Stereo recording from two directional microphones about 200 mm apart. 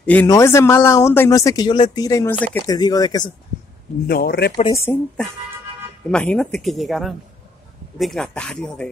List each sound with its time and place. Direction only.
0.0 s speech: 10° left (ahead or behind)
2.6 s speech: 20° left (ahead or behind)
4.1 s speech: 50° left (ahead or behind)
4.7 s speech: 10° left (ahead or behind)